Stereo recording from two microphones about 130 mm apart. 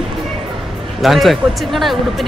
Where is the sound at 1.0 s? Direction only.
Centre (ahead or behind).